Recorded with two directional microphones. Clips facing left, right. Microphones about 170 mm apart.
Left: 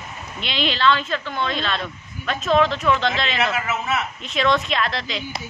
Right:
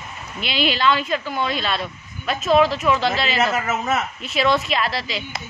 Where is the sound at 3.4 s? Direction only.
40° right (ahead or behind).